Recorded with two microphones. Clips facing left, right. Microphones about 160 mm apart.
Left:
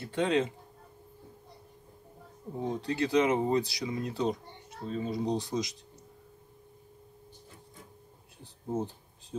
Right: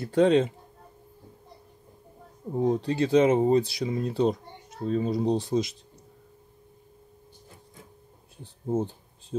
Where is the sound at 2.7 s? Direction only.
30° right (ahead or behind).